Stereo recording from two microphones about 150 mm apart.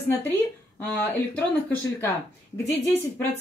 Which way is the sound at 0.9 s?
10° left (ahead or behind).